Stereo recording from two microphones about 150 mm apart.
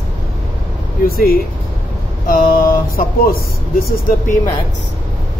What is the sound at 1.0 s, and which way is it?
Speech, 80° left.